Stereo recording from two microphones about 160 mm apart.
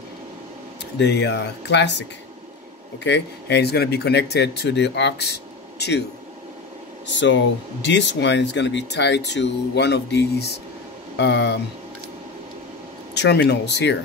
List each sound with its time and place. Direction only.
0.9 s speech: 90° left
7.8 s speech: 90° left
13.1 s speech: 90° left